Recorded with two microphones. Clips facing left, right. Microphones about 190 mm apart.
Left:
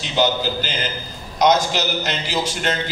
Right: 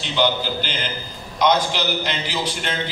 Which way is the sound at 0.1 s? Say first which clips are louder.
Left 1 dB; 45° left (ahead or behind).